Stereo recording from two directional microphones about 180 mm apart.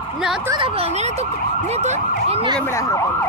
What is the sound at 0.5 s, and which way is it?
Emergency vehicle, 30° right (ahead or behind).